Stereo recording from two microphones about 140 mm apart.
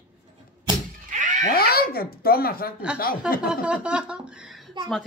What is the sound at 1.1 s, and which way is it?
Cat, 65° right (ahead or behind).